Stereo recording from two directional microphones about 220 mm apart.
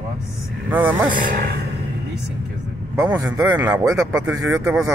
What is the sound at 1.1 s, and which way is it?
Speech, 40° right (ahead or behind).